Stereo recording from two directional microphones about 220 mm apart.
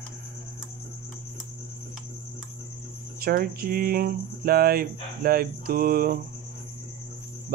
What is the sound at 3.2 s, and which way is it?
Speech, 45° right (ahead or behind).